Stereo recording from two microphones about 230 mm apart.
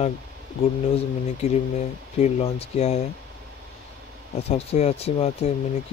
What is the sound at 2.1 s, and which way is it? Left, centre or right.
Speech, left.